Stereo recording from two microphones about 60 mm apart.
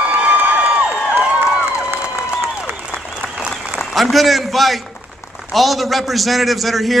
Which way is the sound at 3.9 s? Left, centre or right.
Centre.